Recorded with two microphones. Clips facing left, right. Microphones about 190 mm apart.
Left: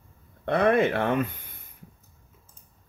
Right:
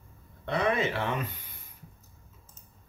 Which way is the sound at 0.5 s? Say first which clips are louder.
Left 6 dB; 55° left (ahead or behind).